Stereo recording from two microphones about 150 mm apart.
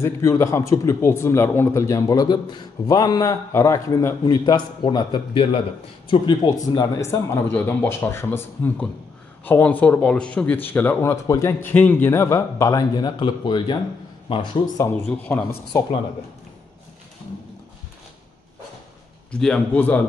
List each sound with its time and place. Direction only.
0.0 s a man's voice: 20° left (ahead or behind); by 14.4 s 35° left (ahead or behind)
14.8 s speech: 10° left (ahead or behind)
19.3 s speech: 5° left (ahead or behind)